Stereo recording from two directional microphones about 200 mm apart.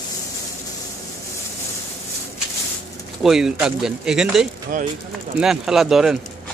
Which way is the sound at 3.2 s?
5° right (ahead or behind).